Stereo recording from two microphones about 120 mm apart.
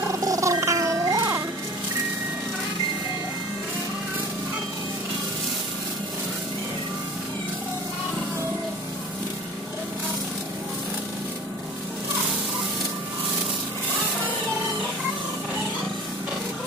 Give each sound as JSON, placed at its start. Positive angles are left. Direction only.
{"t": 0.2, "sound": "cat", "side_deg": -25}